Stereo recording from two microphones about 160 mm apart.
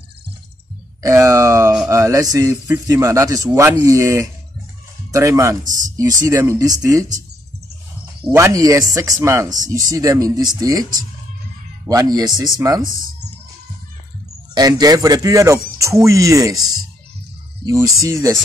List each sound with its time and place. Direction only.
1.0 s a sound: 20° right (ahead or behind)
1.9 s a man's voice: 20° right (ahead or behind)
8.3 s a man's voice: 15° right (ahead or behind)
14.5 s a man's voice: 25° right (ahead or behind)
17.6 s a man's voice: 20° right (ahead or behind)